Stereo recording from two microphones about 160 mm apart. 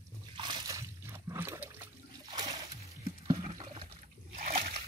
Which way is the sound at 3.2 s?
35° right (ahead or behind).